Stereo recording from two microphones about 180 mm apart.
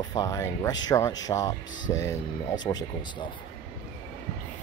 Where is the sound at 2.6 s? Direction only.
20° left (ahead or behind).